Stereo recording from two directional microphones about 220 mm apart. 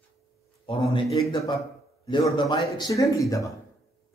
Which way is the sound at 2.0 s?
20° left (ahead or behind).